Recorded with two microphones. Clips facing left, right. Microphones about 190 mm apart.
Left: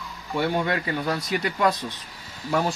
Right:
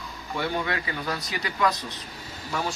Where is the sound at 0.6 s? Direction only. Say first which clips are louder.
Left 4 dB; 45° left (ahead or behind).